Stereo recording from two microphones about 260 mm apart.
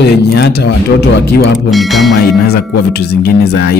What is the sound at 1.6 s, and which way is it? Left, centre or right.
Speech, centre.